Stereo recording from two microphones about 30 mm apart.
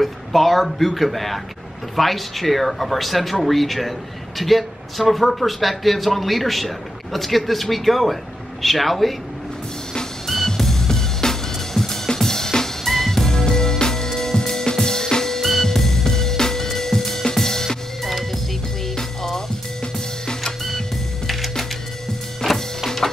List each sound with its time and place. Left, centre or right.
0.0 s a man's voice: centre
10.2 s music: centre
11.5 s drum kit: centre
13.5 s music: left
15.3 s drum kit: centre
15.6 s music: centre
18.0 s music: centre
19.8 s music: left
21.3 s music: centre